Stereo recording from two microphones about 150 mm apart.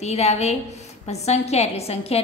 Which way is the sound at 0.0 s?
45° left (ahead or behind).